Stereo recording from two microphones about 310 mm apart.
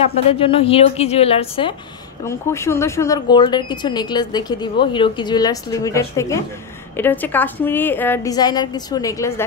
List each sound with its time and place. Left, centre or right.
0.3 s a woman's voice: centre